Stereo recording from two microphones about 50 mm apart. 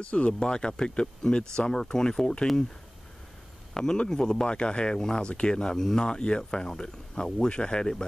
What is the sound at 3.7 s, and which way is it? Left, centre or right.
Speech, centre.